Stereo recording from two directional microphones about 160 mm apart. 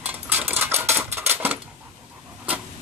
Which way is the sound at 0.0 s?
10° right (ahead or behind).